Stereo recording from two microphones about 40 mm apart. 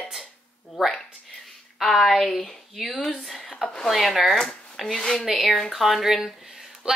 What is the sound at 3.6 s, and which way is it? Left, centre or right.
Speech, centre.